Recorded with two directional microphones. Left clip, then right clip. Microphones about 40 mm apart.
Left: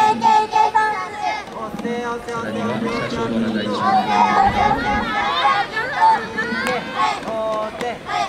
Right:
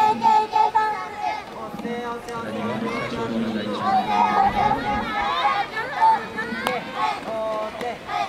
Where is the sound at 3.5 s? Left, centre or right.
Left.